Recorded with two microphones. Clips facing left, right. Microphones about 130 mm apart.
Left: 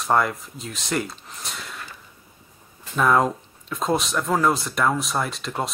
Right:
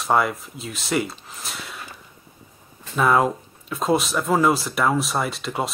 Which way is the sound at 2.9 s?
5° right (ahead or behind).